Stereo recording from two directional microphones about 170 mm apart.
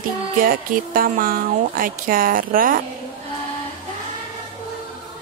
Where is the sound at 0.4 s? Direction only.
55° right (ahead or behind).